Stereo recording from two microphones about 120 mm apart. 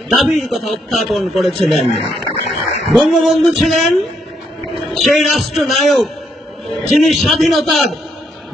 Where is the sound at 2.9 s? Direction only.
Centre (ahead or behind).